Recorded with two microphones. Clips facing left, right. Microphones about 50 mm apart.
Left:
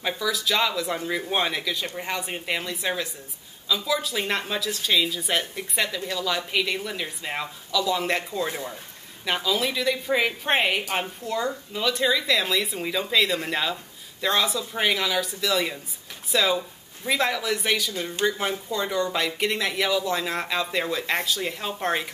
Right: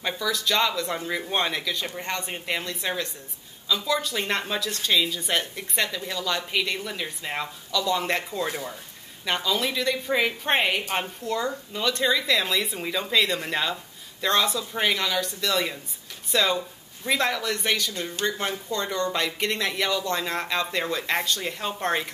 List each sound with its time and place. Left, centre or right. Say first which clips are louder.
0.0 s speech: left 1 dB; centre